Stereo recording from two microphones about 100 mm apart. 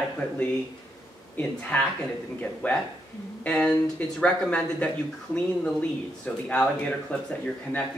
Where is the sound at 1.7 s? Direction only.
10° left (ahead or behind).